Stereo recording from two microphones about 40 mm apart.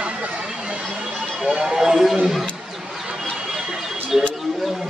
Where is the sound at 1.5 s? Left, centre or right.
Centre.